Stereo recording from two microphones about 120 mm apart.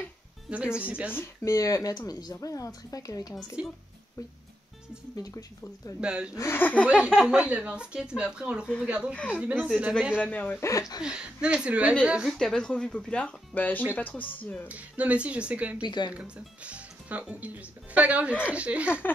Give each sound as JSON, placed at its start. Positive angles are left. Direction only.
{"t": 0.5, "sound": "speech", "side_deg": -10}
{"t": 1.1, "sound": "speech", "side_deg": 25}
{"t": 5.1, "sound": "speech", "side_deg": 30}
{"t": 5.9, "sound": "speech", "side_deg": -10}
{"t": 6.3, "sound": "speech", "side_deg": 20}
{"t": 6.9, "sound": "speech", "side_deg": -10}
{"t": 10.2, "sound": "speech", "side_deg": 15}
{"t": 10.7, "sound": "speech", "side_deg": 30}
{"t": 11.0, "sound": "speech", "side_deg": -5}
{"t": 12.3, "sound": "speech", "side_deg": 5}
{"t": 14.7, "sound": "speech", "side_deg": -10}
{"t": 15.8, "sound": "speech", "side_deg": 40}
{"t": 16.1, "sound": "speech", "side_deg": -10}